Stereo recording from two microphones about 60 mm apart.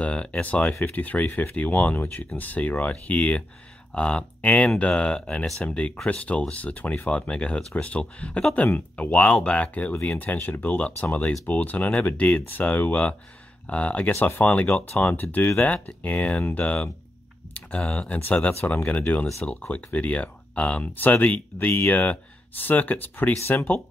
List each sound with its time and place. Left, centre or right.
0.0 s speech: centre; by 23.7 s left